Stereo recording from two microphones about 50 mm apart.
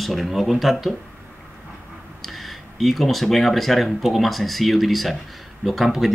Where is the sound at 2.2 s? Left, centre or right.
Centre.